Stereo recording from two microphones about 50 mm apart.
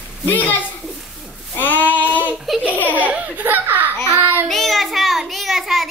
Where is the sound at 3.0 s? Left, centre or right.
Right.